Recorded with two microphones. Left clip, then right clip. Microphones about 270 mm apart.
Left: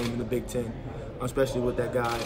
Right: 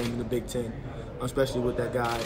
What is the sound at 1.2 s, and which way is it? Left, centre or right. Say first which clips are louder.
Speech: even; centre.